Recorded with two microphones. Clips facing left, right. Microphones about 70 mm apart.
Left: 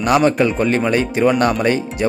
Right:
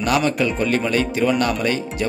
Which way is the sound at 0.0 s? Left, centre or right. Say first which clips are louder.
Left 5 dB; left.